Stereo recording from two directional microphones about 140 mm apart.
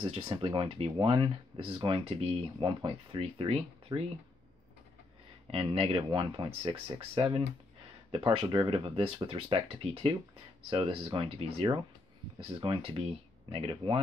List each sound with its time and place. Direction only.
0.0 s speech: 35° right (ahead or behind)
5.5 s speech: 40° right (ahead or behind)